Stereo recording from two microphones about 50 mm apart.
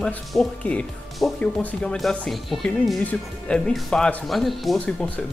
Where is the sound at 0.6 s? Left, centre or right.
Left.